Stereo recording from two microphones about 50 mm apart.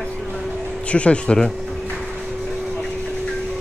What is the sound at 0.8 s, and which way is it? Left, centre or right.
Speech, left.